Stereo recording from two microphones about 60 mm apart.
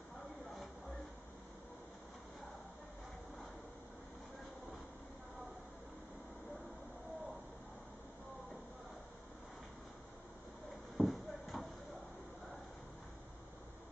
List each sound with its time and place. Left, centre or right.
11.0 s clip-clop: centre